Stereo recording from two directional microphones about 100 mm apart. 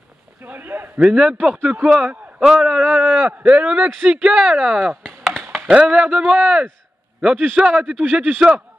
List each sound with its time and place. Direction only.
0.4 s a man's voice: 20° right (ahead or behind)